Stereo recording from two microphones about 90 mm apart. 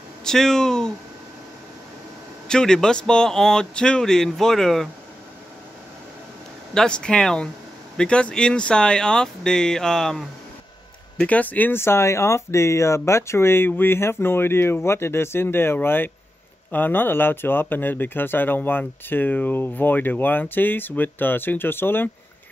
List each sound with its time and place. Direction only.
0.2 s speech: 5° left (ahead or behind)
2.4 s a man's voice: 5° left (ahead or behind)
6.7 s a man's voice: 10° left (ahead or behind)
11.1 s speech: 15° left (ahead or behind)